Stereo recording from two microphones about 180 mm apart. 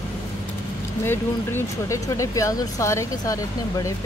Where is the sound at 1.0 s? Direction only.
15° left (ahead or behind).